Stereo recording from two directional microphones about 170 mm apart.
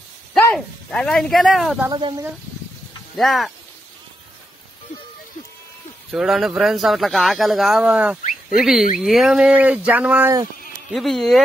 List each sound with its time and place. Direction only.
0.6 s speech: centre (ahead or behind)
1.9 s speech: 25° right (ahead or behind)
3.2 s speech: centre (ahead or behind)
6.1 s speech: 5° right (ahead or behind)